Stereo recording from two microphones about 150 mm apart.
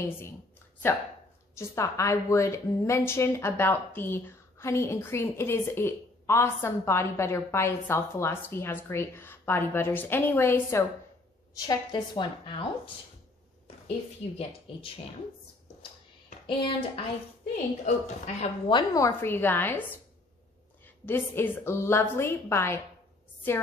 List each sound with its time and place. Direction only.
1.6 s a woman's voice: 20° left (ahead or behind)
11.5 s a woman's voice: 25° left (ahead or behind)
16.4 s a sound: 35° left (ahead or behind)
17.8 s a woman's voice: 50° left (ahead or behind)
18.7 s a woman's voice: 25° left (ahead or behind)
20.8 s a woman's voice: 15° left (ahead or behind)